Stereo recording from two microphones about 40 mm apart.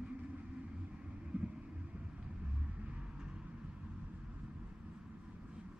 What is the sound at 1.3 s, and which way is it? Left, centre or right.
Vehicle, right.